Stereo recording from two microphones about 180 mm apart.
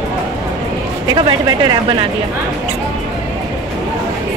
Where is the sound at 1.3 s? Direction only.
25° right (ahead or behind).